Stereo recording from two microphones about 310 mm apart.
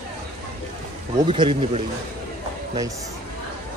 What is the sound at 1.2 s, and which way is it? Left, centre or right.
Speech, centre.